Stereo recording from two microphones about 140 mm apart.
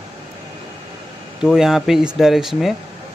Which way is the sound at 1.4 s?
5° right (ahead or behind).